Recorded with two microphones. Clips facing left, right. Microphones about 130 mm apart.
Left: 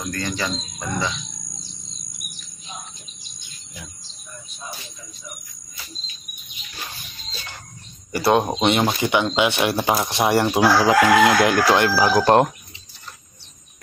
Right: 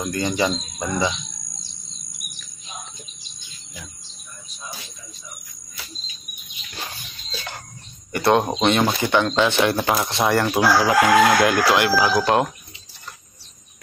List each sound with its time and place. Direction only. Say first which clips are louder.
0.0 s speech: right 5 dB; 20° right (ahead or behind)
8.2 s chicken: even; 15° left (ahead or behind); by 12.4 s 35° left (ahead or behind)